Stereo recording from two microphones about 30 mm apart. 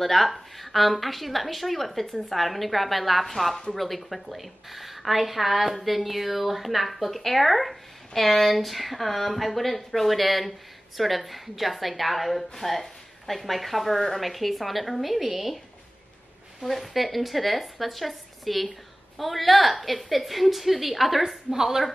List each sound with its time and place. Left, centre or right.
0.0 s speech: centre
16.6 s speech: centre
21.5 s a woman's voice: centre